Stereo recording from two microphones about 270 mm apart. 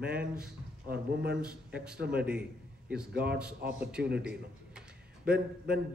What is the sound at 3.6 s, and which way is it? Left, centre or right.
Speech, right.